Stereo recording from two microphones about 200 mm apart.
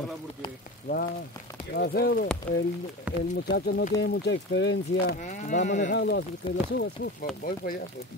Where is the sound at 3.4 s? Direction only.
55° left (ahead or behind).